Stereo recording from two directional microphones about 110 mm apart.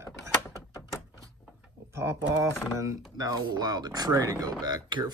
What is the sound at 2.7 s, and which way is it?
Speech, 30° right (ahead or behind).